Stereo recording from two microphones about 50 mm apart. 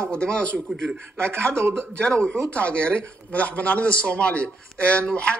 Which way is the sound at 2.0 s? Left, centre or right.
Centre.